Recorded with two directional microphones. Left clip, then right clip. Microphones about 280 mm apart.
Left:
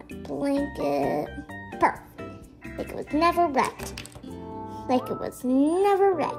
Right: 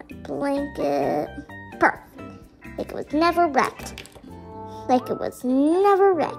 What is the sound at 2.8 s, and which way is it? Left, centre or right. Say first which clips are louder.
Speech: right 2 dB; right.